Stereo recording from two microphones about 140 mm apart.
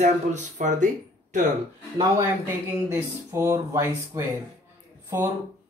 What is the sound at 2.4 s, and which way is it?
Speech, 20° right (ahead or behind).